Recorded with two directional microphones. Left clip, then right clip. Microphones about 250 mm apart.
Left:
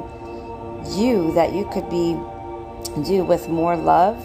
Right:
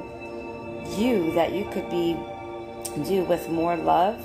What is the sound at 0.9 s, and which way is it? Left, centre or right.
A woman's voice, centre.